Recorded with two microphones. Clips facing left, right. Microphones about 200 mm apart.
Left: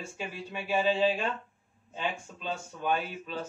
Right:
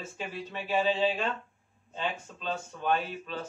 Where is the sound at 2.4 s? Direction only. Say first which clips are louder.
Right 1 dB; 10° left (ahead or behind).